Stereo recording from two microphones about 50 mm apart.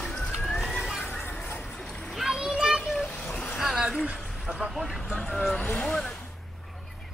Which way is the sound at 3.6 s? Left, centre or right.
Centre.